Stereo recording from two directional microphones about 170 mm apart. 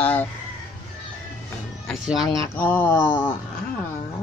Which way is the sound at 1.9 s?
Centre (ahead or behind).